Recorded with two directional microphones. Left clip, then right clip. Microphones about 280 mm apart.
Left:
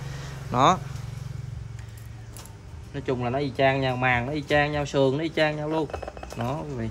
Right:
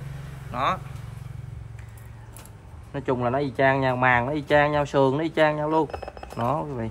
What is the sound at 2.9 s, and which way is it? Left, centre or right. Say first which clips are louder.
Speech: right 3 dB; centre.